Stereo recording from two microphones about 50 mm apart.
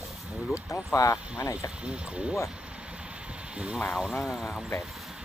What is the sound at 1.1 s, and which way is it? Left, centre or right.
Speech, left.